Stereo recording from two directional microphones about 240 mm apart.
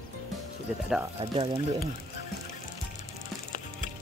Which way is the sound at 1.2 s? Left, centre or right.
Right.